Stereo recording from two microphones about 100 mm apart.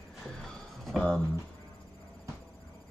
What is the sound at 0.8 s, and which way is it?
Speech, 5° left (ahead or behind).